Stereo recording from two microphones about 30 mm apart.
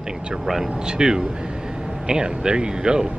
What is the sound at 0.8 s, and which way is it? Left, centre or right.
Speech, right.